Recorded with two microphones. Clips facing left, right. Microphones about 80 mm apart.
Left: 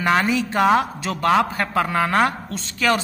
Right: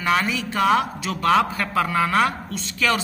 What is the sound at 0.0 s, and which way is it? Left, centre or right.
A man's voice, left.